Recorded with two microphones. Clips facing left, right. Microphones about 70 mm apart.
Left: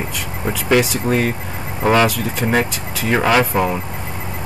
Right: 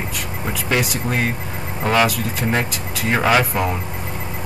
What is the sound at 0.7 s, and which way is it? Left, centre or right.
Speech, centre.